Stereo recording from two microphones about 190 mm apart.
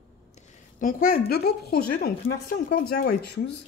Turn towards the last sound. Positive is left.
turn(degrees=55)  # may be behind; listen again after turning